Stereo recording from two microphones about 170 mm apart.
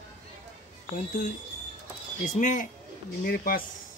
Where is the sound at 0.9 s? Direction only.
50° left (ahead or behind).